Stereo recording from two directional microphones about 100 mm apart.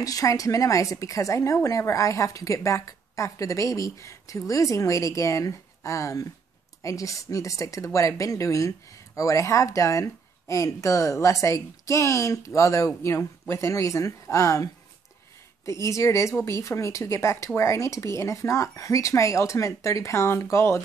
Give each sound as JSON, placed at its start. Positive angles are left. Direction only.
{"t": 0.0, "sound": "speech", "side_deg": 35}